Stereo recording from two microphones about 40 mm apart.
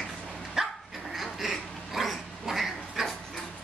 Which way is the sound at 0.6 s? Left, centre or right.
Centre.